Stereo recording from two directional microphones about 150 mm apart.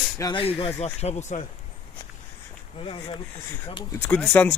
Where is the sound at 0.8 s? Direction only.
45° left (ahead or behind).